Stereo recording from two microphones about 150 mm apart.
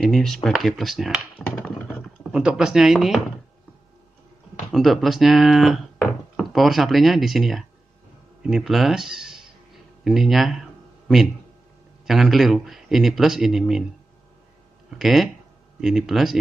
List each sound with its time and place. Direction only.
0.0 s speech: centre (ahead or behind)
1.5 s computer keyboard: 10° left (ahead or behind)
2.3 s speech: 5° right (ahead or behind)
4.7 s speech: centre (ahead or behind)
12.1 s speech: centre (ahead or behind)
15.0 s speech: centre (ahead or behind)